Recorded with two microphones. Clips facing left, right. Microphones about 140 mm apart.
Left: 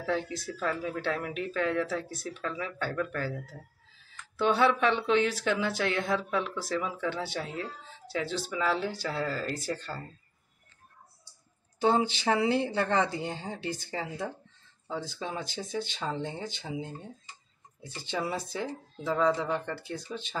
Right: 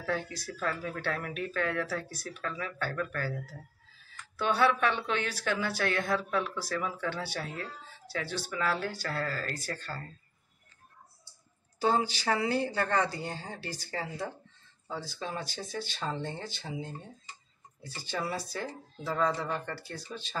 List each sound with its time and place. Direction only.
0.0 s speech: 20° left (ahead or behind)
11.8 s speech: 20° left (ahead or behind)
17.8 s speech: 20° left (ahead or behind)